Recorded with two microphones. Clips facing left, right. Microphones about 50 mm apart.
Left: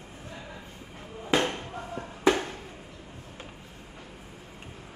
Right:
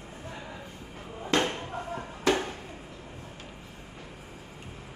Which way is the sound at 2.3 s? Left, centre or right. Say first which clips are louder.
Left 2 dB; centre.